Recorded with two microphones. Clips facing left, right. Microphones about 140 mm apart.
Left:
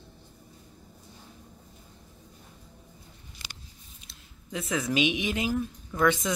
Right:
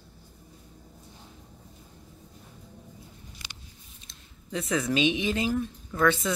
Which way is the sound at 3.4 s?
15° left (ahead or behind).